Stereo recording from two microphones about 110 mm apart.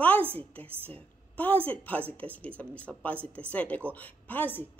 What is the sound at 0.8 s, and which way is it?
A woman's voice, 15° left (ahead or behind).